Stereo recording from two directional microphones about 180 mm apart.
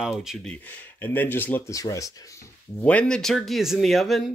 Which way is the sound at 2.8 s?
5° left (ahead or behind).